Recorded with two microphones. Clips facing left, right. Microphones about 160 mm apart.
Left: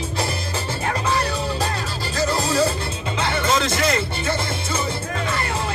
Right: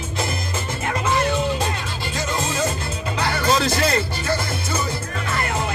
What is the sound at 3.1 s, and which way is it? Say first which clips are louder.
Music: right 1 dB; 25° left (ahead or behind).